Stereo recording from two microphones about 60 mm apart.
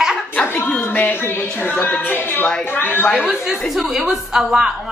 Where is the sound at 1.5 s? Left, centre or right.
Left.